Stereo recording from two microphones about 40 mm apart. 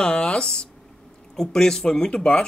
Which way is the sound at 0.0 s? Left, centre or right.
Left.